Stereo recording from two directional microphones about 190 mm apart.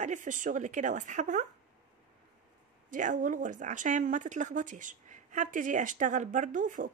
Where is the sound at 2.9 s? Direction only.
45° right (ahead or behind).